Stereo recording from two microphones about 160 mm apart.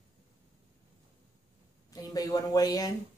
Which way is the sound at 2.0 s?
25° left (ahead or behind).